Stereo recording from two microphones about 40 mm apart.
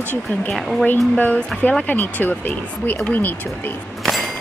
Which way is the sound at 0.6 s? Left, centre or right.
Centre.